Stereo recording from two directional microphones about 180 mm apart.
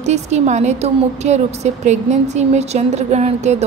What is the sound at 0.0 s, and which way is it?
A woman's voice, 40° right (ahead or behind).